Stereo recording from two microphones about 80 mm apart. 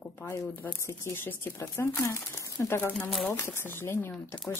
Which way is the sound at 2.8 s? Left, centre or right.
Left.